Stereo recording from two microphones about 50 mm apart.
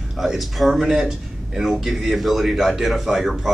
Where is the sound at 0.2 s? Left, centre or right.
Centre.